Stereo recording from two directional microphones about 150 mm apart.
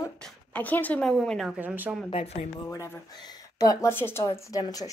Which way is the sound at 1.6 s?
10° right (ahead or behind).